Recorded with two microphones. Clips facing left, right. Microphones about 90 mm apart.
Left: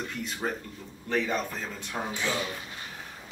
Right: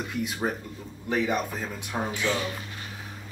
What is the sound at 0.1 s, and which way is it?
Speech, 10° right (ahead or behind).